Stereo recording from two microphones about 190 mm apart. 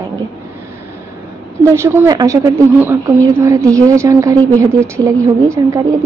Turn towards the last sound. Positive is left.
turn(degrees=-15)  # may be behind; listen again after turning